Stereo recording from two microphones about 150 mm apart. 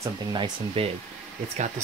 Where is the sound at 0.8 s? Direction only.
40° right (ahead or behind).